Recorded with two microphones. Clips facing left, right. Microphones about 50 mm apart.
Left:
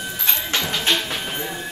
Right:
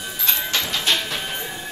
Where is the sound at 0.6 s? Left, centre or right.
Centre.